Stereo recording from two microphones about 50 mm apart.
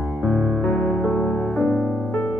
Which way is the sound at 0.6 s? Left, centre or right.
Left.